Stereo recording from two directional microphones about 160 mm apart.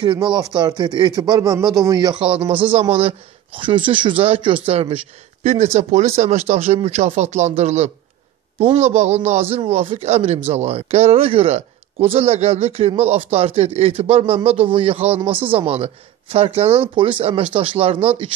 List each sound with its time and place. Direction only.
0.0 s speech: 30° right (ahead or behind)
2.1 s a man's voice: 35° right (ahead or behind)